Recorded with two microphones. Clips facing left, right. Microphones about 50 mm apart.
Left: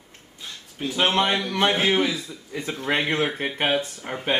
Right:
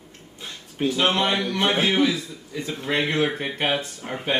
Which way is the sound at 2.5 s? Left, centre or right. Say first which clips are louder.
Even; left.